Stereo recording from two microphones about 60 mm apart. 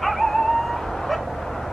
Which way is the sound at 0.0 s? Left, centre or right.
Centre.